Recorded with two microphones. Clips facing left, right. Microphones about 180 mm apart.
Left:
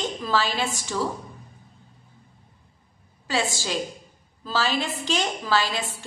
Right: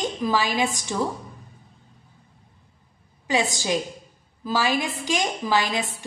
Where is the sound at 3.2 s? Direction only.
15° right (ahead or behind).